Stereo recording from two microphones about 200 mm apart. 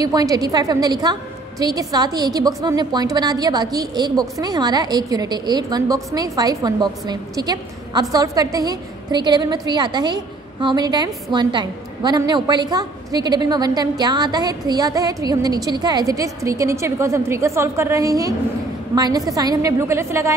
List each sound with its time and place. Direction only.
0.0 s a woman's voice: 20° right (ahead or behind)